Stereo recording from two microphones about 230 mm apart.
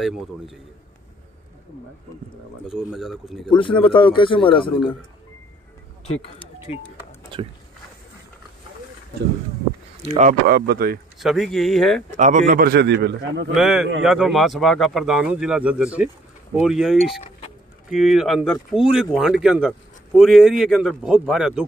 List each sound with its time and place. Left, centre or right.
0.0 s speech: centre
2.7 s speech: centre
3.5 s speech: left
10.0 s a man's voice: right
11.1 s speech: centre
12.1 s a man's voice: right
13.6 s speech: centre